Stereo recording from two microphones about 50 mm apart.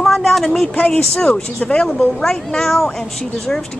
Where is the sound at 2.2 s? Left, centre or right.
Centre.